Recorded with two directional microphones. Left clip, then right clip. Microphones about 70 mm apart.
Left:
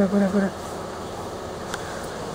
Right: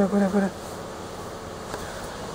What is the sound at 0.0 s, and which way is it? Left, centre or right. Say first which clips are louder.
Speech: left 1 dB; right.